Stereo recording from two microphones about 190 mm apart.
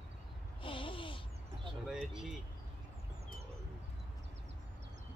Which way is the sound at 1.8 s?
5° right (ahead or behind).